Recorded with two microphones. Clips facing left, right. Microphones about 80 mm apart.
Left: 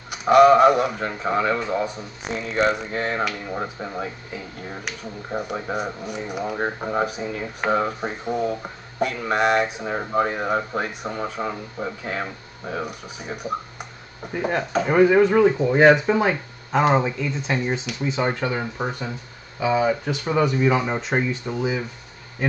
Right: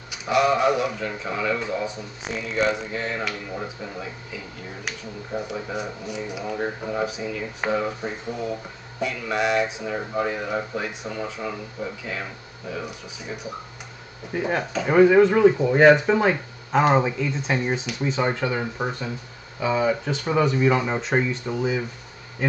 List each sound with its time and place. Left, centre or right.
0.1 s speech: left
14.3 s speech: centre